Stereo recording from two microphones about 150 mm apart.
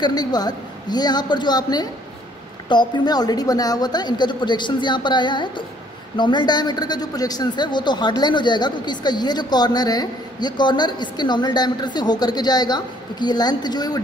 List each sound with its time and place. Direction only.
0.0 s a woman's voice: 25° left (ahead or behind)